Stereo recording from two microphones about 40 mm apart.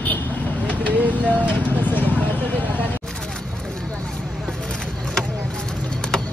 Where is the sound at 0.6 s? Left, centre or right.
Left.